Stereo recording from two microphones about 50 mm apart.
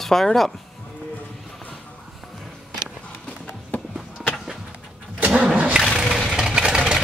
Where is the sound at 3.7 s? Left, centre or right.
Left.